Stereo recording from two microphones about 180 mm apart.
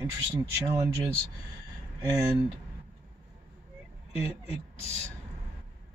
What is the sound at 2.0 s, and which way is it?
Speech, 15° right (ahead or behind).